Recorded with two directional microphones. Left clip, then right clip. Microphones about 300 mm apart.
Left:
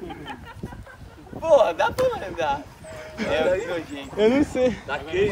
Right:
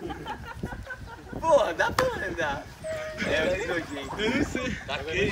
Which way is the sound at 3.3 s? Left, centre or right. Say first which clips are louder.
Left 5 dB; left.